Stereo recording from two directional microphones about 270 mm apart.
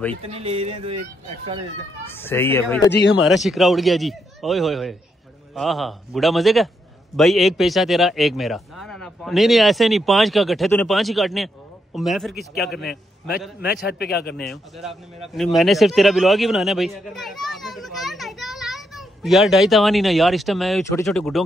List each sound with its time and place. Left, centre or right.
0.1 s speech: right
2.0 s speech: centre
2.9 s a man's voice: left
3.3 s speech: centre
13.6 s a man's voice: left
14.3 s a man's voice: centre